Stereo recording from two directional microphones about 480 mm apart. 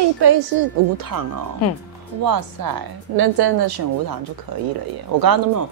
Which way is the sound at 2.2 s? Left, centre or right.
Right.